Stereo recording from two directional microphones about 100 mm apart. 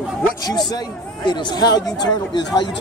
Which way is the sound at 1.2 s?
45° left (ahead or behind).